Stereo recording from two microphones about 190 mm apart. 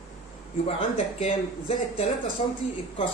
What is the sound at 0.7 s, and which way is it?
Speech, 30° left (ahead or behind).